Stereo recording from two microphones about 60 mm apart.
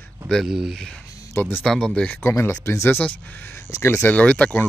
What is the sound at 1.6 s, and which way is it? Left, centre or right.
Speech, centre.